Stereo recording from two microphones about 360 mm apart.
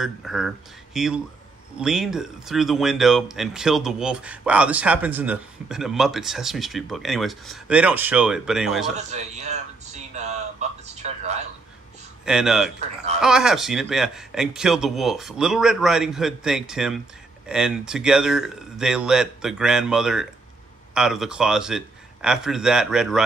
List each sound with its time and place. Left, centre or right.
0.0 s speech: centre
8.9 s a sound: centre
11.0 s a man's voice: centre
12.3 s speech: centre
12.8 s speech: centre
13.2 s speech: centre